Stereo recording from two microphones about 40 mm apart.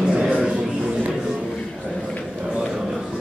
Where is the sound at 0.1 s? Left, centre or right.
Right.